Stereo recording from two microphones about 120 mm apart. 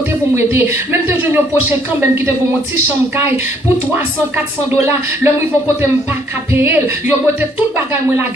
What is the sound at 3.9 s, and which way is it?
Speech, 15° right (ahead or behind).